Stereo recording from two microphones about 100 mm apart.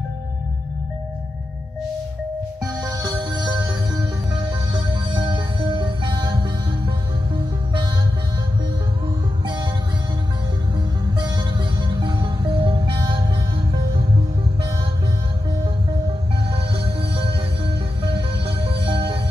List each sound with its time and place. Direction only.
2.6 s music: 40° right (ahead or behind)
11.1 s music: 45° right (ahead or behind); by 14.0 s 65° right (ahead or behind)
16.5 s music: 65° right (ahead or behind)